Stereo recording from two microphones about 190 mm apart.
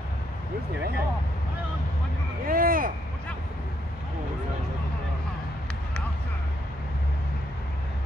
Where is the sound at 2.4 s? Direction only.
50° right (ahead or behind).